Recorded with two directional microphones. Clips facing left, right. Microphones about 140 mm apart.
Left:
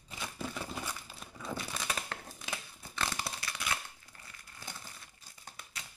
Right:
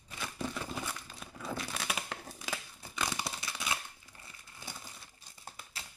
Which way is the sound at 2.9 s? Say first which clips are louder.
Right 1 dB; 15° right (ahead or behind).